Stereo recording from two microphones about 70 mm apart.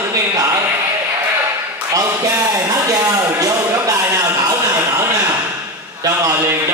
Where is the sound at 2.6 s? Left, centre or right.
Right.